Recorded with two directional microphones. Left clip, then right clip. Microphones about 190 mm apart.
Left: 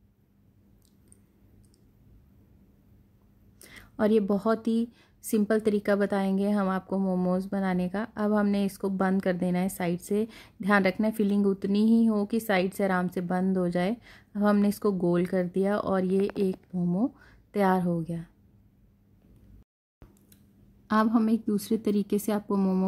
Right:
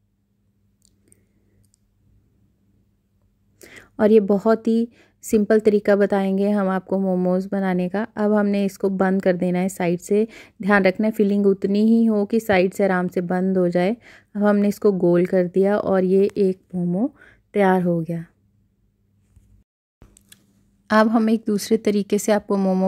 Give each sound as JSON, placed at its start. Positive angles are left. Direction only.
{"t": 3.5, "sound": "speech", "side_deg": -25}
{"t": 16.8, "sound": "speech", "side_deg": -5}
{"t": 17.1, "sound": "speech", "side_deg": -20}
{"t": 20.8, "sound": "speech", "side_deg": -25}